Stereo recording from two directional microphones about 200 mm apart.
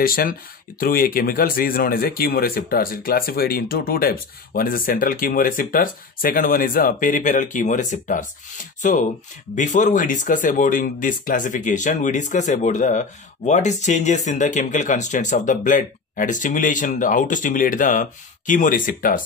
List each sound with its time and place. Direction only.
0.0 s speech: 45° left (ahead or behind)